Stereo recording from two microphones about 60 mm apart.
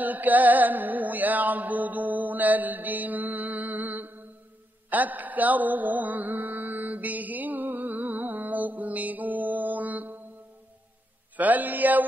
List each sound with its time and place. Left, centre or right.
0.0 s music: right
4.8 s mantra: right
11.3 s mantra: right